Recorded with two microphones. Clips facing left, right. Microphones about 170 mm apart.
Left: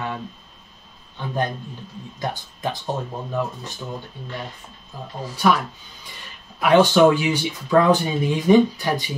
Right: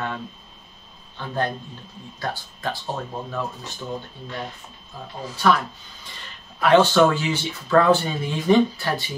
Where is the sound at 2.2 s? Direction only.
20° left (ahead or behind).